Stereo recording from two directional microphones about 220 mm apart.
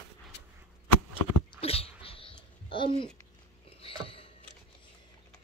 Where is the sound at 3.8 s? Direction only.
25° left (ahead or behind).